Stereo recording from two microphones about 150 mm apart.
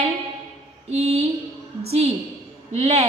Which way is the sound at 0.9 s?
45° right (ahead or behind).